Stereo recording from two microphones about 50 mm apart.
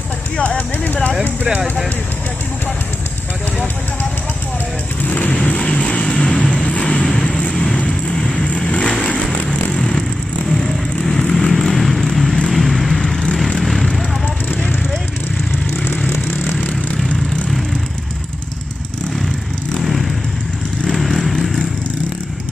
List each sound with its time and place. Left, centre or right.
0.6 s speech: left
5.0 s vehicle: left; by 13.9 s centre
16.5 s vehicle: centre
19.8 s vehicle: centre